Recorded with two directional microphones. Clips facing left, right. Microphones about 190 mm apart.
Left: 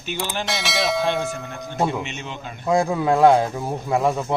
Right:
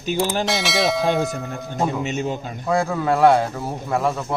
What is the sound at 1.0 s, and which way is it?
Speech, 40° right (ahead or behind).